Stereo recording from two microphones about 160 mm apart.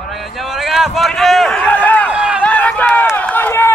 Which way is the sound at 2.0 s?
5° right (ahead or behind).